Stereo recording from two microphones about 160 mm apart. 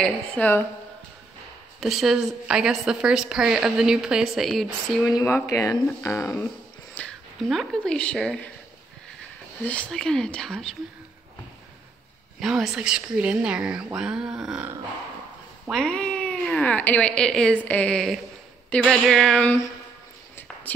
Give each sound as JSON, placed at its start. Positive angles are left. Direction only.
{"t": 0.0, "sound": "speech", "side_deg": 10}
{"t": 1.8, "sound": "a woman's voice", "side_deg": 0}
{"t": 5.1, "sound": "speech", "side_deg": 15}
{"t": 7.0, "sound": "speech", "side_deg": 5}
{"t": 9.7, "sound": "a woman's voice", "side_deg": 5}
{"t": 12.4, "sound": "a woman's voice", "side_deg": 0}
{"t": 15.7, "sound": "speech", "side_deg": 5}